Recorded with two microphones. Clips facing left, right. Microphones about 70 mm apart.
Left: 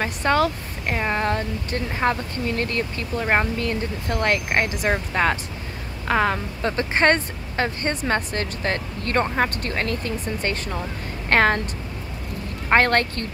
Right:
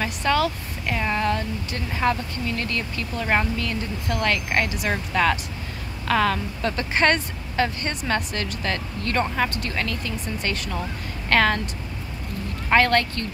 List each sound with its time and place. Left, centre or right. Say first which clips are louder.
0.0 s speech: left 2 dB; left
12.6 s speech: left 1 dB; left